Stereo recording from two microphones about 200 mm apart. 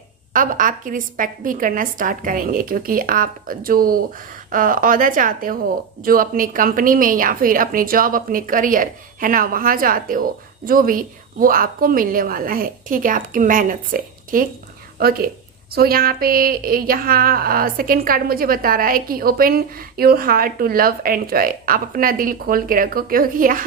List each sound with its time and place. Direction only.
0.3 s a woman's voice: 40° right (ahead or behind)